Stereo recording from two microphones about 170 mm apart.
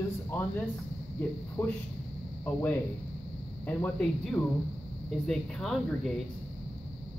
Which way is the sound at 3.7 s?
5° left (ahead or behind).